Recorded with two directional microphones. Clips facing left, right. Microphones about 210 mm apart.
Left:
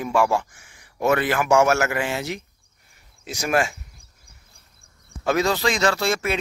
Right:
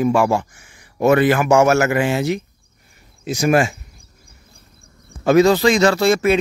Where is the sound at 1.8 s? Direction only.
10° right (ahead or behind).